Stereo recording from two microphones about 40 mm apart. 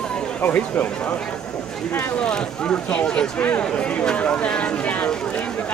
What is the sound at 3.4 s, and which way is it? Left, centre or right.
Speech, left.